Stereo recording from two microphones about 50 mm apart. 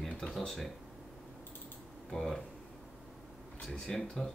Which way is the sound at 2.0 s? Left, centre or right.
Centre.